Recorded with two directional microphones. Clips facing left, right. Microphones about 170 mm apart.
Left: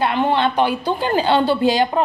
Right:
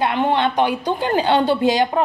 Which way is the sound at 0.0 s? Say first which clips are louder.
Even; 20° right (ahead or behind).